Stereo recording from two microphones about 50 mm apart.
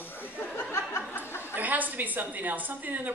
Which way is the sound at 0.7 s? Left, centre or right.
Left.